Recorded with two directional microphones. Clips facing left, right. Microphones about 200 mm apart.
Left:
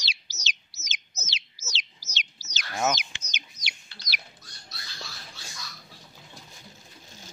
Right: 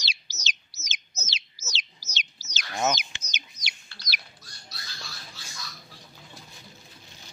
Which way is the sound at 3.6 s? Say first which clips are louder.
Left 2 dB; 40° right (ahead or behind).